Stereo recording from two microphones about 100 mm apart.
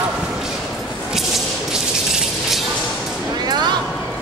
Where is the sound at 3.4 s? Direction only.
45° right (ahead or behind).